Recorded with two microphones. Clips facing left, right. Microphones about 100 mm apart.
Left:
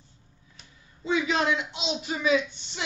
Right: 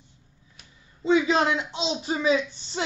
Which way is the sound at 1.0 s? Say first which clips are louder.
Right 4 dB; 30° right (ahead or behind).